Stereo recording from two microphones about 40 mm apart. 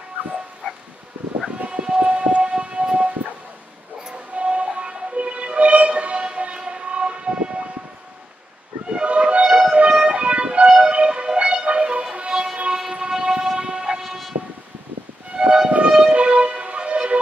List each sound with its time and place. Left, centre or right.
0.6 s dog: left
1.7 s siren: right
4.0 s music: right
8.9 s a sound: right
9.8 s music: right
13.1 s train: centre
14.0 s vehicle: centre
15.3 s music: right